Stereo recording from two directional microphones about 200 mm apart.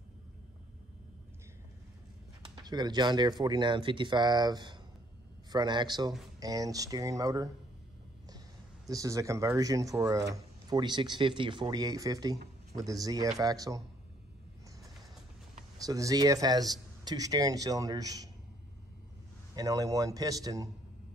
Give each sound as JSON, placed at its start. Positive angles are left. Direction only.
{"t": 2.4, "sound": "speech", "side_deg": -20}
{"t": 8.8, "sound": "speech", "side_deg": -15}
{"t": 15.8, "sound": "speech", "side_deg": -15}
{"t": 19.5, "sound": "speech", "side_deg": -20}